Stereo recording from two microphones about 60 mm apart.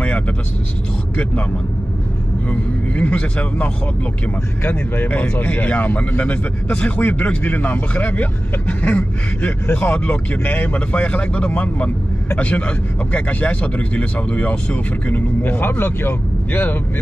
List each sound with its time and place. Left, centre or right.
3.0 s speech: left